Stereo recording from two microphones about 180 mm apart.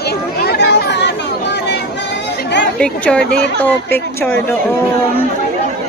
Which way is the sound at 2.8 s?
5° left (ahead or behind).